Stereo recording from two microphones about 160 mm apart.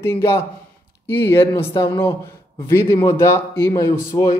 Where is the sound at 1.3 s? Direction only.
15° left (ahead or behind).